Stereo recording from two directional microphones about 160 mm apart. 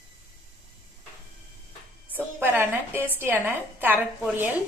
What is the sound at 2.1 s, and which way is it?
A woman's voice, 10° right (ahead or behind).